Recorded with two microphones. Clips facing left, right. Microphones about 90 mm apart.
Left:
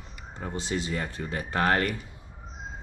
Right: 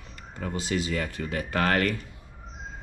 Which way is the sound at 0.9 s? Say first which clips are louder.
Right 2 dB; 15° left (ahead or behind).